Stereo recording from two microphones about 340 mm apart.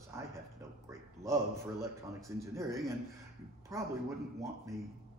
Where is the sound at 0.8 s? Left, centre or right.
Centre.